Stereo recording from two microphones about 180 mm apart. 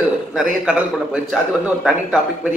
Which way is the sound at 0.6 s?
5° right (ahead or behind).